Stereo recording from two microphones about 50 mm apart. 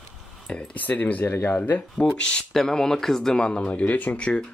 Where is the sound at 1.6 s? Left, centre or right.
Left.